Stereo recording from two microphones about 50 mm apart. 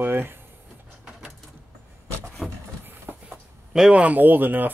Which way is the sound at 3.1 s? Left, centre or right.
Right.